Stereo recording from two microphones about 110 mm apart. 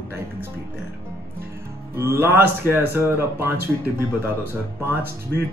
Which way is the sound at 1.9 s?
20° right (ahead or behind).